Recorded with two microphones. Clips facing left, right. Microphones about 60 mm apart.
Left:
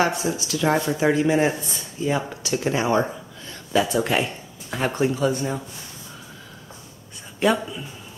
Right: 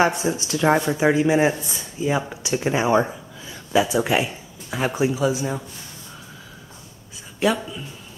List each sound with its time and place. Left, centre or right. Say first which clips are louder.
0.0 s speech: right 2 dB; right; by 5.6 s centre
7.3 s speech: left 1 dB; centre